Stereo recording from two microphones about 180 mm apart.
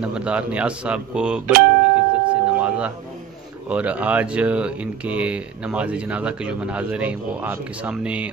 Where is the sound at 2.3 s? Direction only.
5° right (ahead or behind).